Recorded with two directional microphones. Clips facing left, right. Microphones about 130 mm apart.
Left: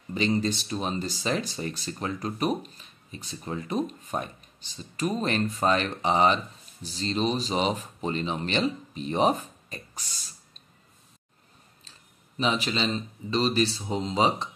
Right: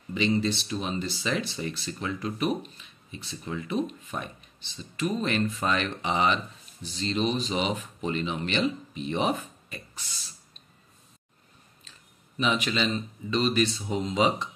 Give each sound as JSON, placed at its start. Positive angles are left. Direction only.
{"t": 0.1, "sound": "speech", "side_deg": 40}
{"t": 12.4, "sound": "speech", "side_deg": 35}